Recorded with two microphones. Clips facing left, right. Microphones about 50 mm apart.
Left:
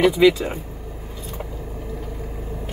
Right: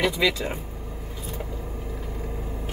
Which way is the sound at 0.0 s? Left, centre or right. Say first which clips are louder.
Left 8 dB; centre.